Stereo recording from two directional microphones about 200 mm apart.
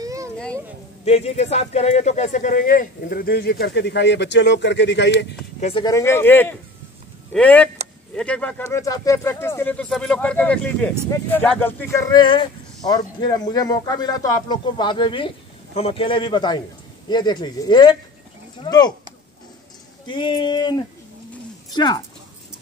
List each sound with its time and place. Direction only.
0.0 s a sound: 15° right (ahead or behind)
1.0 s speech: 30° left (ahead or behind); by 5.2 s 60° left (ahead or behind)
5.6 s speech: 30° left (ahead or behind)
5.9 s speech: 15° left (ahead or behind)
20.1 s speech: 25° left (ahead or behind)